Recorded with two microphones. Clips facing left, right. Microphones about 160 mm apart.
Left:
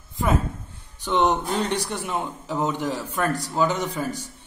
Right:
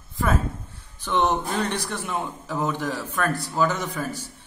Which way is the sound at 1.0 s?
15° left (ahead or behind).